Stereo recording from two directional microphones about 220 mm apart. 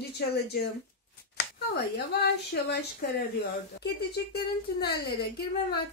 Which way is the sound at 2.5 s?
45° left (ahead or behind).